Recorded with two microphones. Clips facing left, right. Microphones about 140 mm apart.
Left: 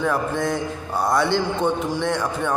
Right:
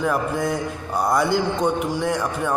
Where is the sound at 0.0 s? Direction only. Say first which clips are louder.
Even; 5° right (ahead or behind).